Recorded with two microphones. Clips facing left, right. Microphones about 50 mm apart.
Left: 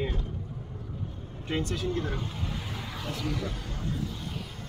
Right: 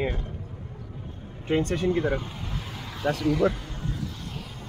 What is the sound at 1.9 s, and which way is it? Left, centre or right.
Speech, right.